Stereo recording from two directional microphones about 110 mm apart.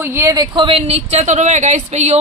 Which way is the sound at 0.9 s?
90° right.